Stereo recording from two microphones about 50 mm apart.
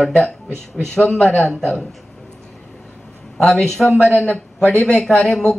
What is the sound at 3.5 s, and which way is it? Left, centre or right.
Speech, centre.